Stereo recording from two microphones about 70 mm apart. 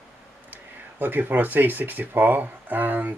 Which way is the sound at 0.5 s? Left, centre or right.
Right.